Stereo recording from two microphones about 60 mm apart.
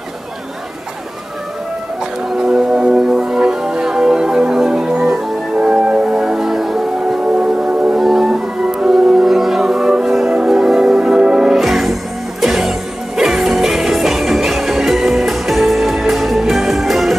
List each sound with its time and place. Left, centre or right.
2.3 s music: centre
7.3 s music: centre
8.0 s music: centre